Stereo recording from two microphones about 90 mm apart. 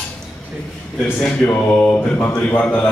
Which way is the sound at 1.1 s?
10° left (ahead or behind).